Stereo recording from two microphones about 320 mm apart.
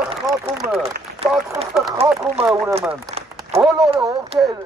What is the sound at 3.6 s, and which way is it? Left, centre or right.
Speech, centre.